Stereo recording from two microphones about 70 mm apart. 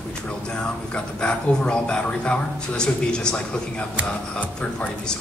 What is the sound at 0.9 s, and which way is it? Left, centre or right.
Speech, centre.